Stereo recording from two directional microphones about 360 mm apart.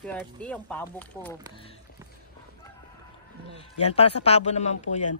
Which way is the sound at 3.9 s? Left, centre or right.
Centre.